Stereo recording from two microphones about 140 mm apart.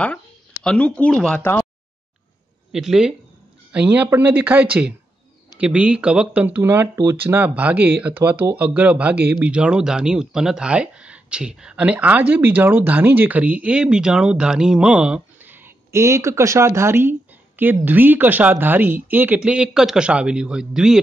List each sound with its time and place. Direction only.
0.7 s speech: 10° left (ahead or behind)
2.7 s speech: 5° right (ahead or behind)